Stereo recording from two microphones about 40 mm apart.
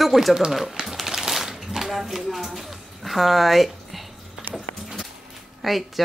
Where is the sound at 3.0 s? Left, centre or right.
Centre.